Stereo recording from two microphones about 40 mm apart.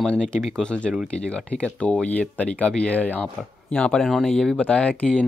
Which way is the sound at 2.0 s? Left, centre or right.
Left.